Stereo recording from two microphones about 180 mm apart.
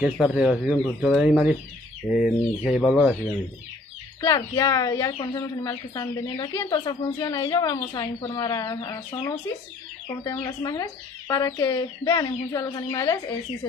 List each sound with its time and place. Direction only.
0.0 s speech: 5° right (ahead or behind)
4.2 s speech: 20° left (ahead or behind)